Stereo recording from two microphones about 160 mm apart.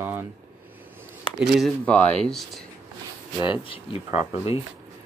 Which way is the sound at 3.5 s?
35° left (ahead or behind).